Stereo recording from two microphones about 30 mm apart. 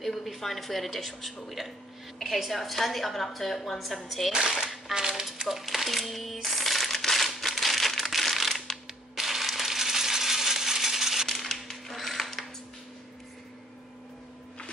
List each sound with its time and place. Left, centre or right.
0.0 s a woman's voice: centre
2.3 s speech: centre
2.6 s a woman's voice: centre
4.4 s speech: centre
5.5 s speech: centre
7.3 s crumpling: centre
8.7 s a sound: centre
9.1 s coin: centre
11.2 s a sound: centre
11.9 s a sound: centre